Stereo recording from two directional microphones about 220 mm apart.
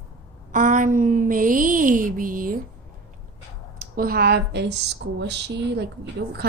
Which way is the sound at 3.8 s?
40° right (ahead or behind).